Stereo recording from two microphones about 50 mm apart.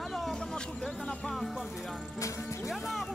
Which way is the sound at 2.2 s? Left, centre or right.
Left.